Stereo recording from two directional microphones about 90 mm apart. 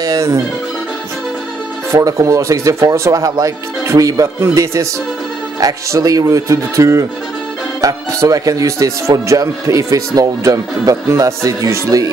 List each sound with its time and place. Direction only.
0.0 s speech: 40° right (ahead or behind)
1.9 s speech: 35° right (ahead or behind)